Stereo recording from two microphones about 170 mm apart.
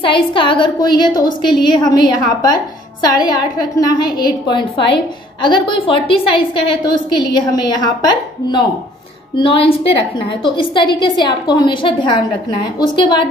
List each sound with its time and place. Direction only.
0.0 s a woman's voice: 30° left (ahead or behind)